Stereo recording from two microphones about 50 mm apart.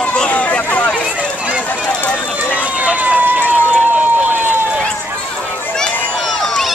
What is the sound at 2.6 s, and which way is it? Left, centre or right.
Run, right.